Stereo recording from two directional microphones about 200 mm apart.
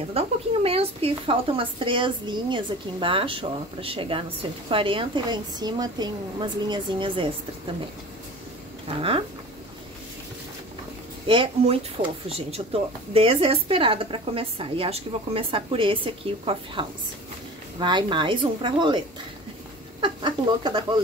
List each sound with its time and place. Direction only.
0.1 s a woman's voice: 30° right (ahead or behind)
8.8 s speech: 25° right (ahead or behind)
11.2 s a woman's voice: 25° right (ahead or behind)